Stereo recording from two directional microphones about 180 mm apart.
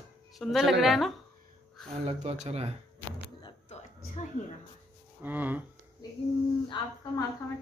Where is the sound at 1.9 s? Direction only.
35° right (ahead or behind).